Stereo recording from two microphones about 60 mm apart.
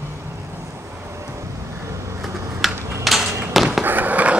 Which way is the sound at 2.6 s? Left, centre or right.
Centre.